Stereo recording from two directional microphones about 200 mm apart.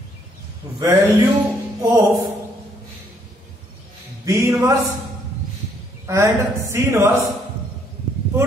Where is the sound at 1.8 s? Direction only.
15° right (ahead or behind).